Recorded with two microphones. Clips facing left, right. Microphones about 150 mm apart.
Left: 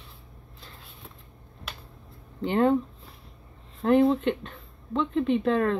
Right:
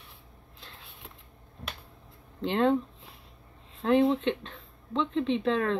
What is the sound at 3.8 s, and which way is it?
Speech, 10° left (ahead or behind).